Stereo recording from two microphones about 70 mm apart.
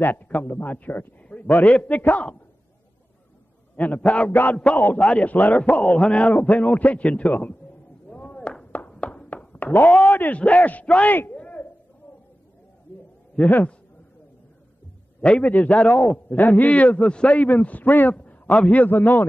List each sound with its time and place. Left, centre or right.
0.0 s a man's voice: left
3.7 s a man's voice: left
4.3 s a man's voice: left
4.9 s a man's voice: centre
5.6 s a man's voice: centre
8.1 s chop: centre
8.7 s a sound: centre
9.8 s a man's voice: centre
10.1 s a man's voice: left
11.0 s a sound: left
13.4 s a man's voice: left
15.4 s a man's voice: left
18.1 s a man's voice: centre
18.8 s a man's voice: left